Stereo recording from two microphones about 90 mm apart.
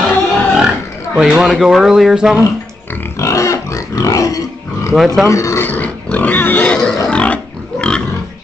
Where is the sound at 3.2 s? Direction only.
35° left (ahead or behind).